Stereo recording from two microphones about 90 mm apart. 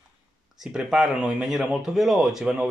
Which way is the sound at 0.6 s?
10° right (ahead or behind).